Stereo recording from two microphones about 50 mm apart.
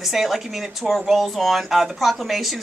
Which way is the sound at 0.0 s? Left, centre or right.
Centre.